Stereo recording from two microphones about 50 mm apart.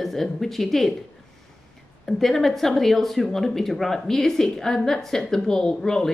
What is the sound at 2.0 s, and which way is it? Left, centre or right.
Speech, centre.